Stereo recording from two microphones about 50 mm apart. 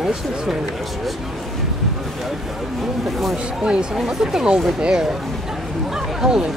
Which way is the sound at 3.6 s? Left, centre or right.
Centre.